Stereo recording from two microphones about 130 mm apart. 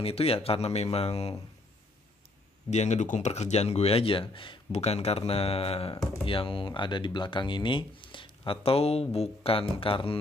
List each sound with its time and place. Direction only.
0.0 s speech: 50° left (ahead or behind)
2.7 s speech: 60° left (ahead or behind); by 10.1 s 45° left (ahead or behind)